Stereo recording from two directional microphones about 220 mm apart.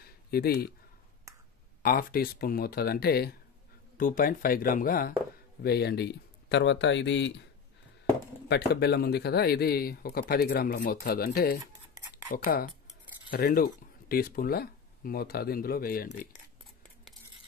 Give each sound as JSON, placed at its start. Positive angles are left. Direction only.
{"t": 0.0, "sound": "a sound", "side_deg": 45}
{"t": 1.8, "sound": "a man's voice", "side_deg": 40}
{"t": 8.5, "sound": "a man's voice", "side_deg": 45}
{"t": 13.3, "sound": "a man's voice", "side_deg": 40}